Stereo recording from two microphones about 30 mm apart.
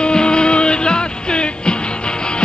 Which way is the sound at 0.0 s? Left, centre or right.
Left.